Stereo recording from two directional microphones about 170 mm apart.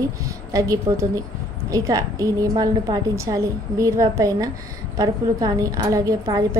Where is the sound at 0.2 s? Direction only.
20° right (ahead or behind).